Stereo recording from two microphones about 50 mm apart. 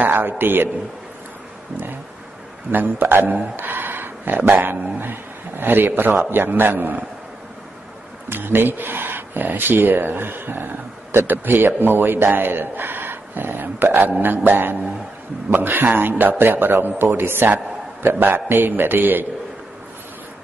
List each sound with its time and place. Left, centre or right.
0.0 s a man's voice: right
2.7 s speech: right
3.5 s a sound: right
4.4 s speech: right
8.3 s speech: right
14.2 s music: right
15.5 s speech: right